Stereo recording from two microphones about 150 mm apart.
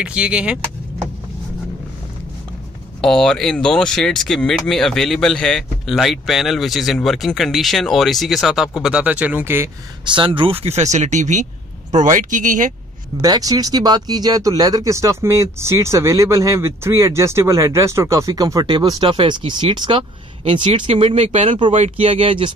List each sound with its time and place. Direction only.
0.0 s speech: 5° right (ahead or behind)
3.0 s speech: 5° left (ahead or behind); by 9.7 s 15° right (ahead or behind)
10.0 s speech: 35° right (ahead or behind)
10.6 s speech: 50° right (ahead or behind)
13.2 s speech: 25° right (ahead or behind)